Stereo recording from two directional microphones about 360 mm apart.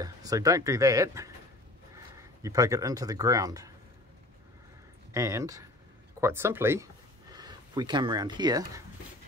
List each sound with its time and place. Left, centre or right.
0.0 s speech: centre
5.1 s speech: centre